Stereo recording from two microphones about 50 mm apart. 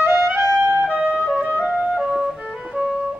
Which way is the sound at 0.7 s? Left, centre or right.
Right.